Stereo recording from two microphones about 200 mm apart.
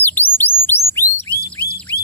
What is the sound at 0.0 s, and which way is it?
Bird, 10° left (ahead or behind).